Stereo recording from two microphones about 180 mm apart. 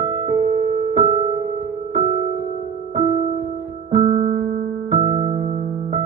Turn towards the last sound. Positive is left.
turn(degrees=-40)  # may be behind; listen again after turning